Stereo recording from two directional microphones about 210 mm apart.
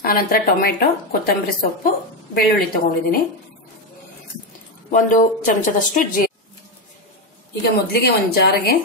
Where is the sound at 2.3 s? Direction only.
45° left (ahead or behind).